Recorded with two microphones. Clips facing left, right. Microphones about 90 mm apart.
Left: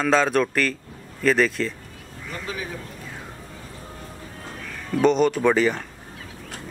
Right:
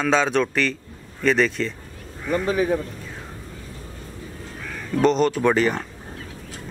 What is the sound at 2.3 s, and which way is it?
Speech, 50° right (ahead or behind).